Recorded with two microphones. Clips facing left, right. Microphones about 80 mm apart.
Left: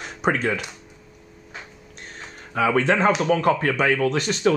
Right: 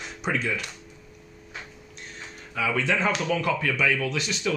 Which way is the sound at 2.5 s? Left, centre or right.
Left.